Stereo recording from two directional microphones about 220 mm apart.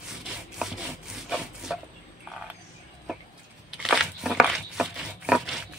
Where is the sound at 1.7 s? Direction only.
5° right (ahead or behind).